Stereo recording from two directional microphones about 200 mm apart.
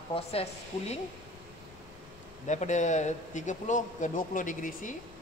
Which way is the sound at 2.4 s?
35° left (ahead or behind).